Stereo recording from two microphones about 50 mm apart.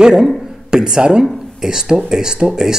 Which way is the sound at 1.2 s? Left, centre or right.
Centre.